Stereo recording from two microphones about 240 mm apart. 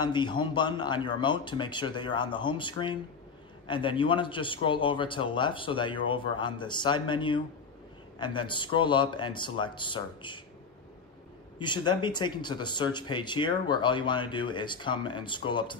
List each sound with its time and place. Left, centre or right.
0.0 s speech: centre
11.6 s speech: centre